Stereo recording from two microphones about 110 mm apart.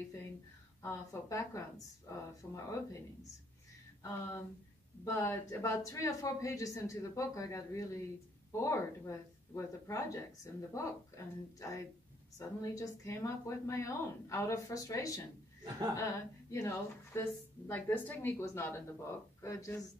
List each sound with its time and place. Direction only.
0.8 s speech: 25° left (ahead or behind)
4.0 s speech: 20° left (ahead or behind)